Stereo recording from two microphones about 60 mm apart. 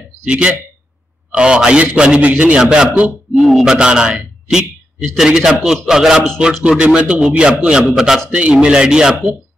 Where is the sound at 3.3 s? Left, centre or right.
Centre.